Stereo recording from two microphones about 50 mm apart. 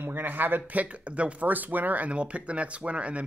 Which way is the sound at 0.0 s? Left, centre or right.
Right.